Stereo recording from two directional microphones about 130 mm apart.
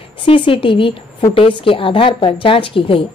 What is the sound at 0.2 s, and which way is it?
A woman's voice, 40° left (ahead or behind).